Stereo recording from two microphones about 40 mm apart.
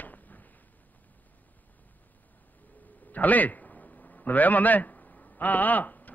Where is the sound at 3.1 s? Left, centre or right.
Left.